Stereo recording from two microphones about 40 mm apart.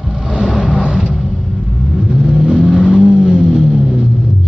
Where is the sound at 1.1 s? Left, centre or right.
Centre.